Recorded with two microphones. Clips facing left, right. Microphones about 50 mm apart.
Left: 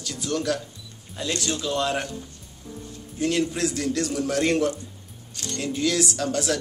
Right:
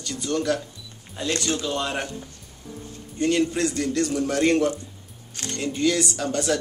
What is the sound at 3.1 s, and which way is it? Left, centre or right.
Speech, centre.